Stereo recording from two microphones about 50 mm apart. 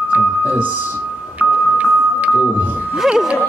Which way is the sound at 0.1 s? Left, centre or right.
Right.